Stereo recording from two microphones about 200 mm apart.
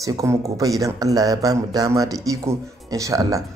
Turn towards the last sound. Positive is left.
turn(degrees=-15)  # may be behind; listen again after turning